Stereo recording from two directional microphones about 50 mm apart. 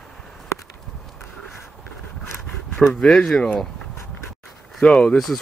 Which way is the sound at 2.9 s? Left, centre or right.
Centre.